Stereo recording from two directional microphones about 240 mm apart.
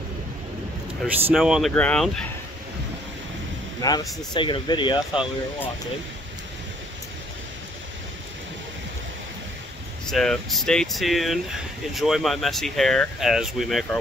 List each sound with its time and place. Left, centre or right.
1.3 s speech: centre
3.8 s speech: centre
10.0 s speech: centre